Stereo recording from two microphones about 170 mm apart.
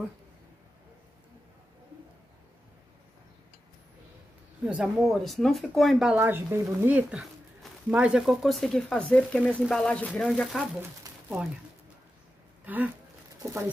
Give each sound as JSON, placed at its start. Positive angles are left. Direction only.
{"t": 4.6, "sound": "speech", "side_deg": -5}
{"t": 6.1, "sound": "speech", "side_deg": -15}
{"t": 10.8, "sound": "a sound", "side_deg": -15}
{"t": 12.6, "sound": "speech", "side_deg": -10}